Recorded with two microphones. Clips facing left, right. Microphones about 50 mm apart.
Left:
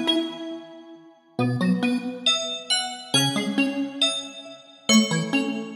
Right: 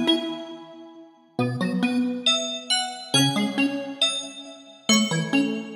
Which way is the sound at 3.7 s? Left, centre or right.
Centre.